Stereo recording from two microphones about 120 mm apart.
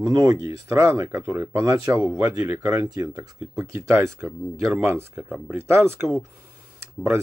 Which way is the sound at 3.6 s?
20° right (ahead or behind).